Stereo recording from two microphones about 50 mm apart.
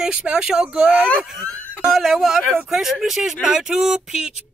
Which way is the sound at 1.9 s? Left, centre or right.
Centre.